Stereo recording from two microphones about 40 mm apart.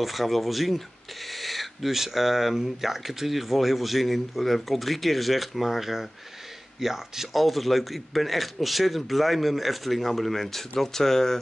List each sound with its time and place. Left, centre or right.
0.0 s speech: centre